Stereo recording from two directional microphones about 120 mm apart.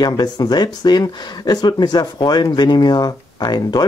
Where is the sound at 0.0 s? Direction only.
35° left (ahead or behind).